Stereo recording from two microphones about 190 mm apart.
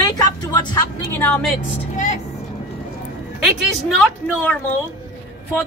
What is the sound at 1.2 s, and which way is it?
Speech, 10° left (ahead or behind).